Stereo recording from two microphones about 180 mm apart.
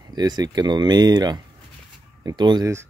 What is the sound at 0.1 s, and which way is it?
Speech, 20° right (ahead or behind).